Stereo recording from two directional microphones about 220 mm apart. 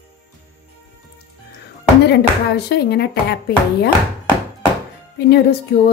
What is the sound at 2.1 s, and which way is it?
A woman's voice, 50° left (ahead or behind).